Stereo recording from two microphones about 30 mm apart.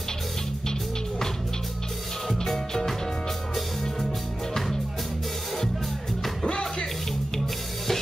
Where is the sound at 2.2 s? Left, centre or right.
Centre.